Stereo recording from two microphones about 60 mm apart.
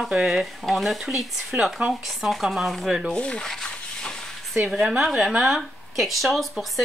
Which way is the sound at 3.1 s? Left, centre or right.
Centre.